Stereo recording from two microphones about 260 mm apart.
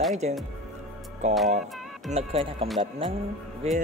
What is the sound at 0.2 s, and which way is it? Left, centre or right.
Speech, right.